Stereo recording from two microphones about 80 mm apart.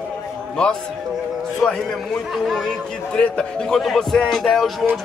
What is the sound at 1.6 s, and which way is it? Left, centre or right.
Speech, centre.